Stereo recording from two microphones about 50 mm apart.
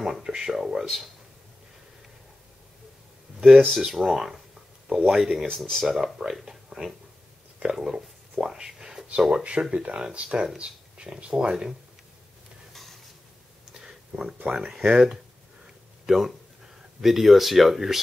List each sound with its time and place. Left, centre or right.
0.0 s speech: centre
3.4 s speech: centre
5.6 s speech: centre
6.2 s speech: centre
7.6 s whispering: centre
9.4 s speech: right
11.3 s speech: centre
12.7 s stir: centre
13.7 s a sound: centre
14.4 s speech: right
15.6 s a sound: centre
17.0 s speech: centre